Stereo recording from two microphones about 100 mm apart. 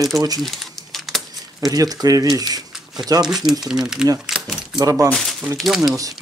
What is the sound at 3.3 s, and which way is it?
Speech, 5° right (ahead or behind).